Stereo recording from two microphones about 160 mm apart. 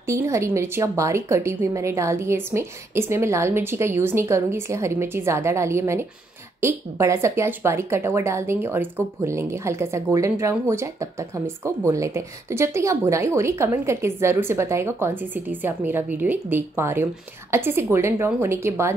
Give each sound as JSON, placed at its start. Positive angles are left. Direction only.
{"t": 0.0, "sound": "speech", "side_deg": -20}